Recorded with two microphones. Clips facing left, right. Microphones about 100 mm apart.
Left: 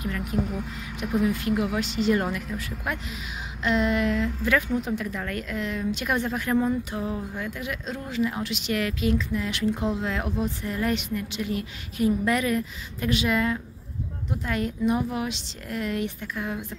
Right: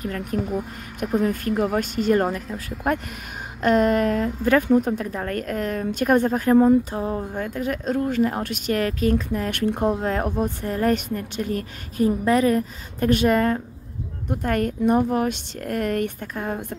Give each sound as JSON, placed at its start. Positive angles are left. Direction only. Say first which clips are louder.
{"t": 0.0, "sound": "a woman's voice", "louder": "right 2 dB", "side_deg": -40}
{"t": 3.6, "sound": "a woman's voice", "louder": "right 5 dB", "side_deg": -50}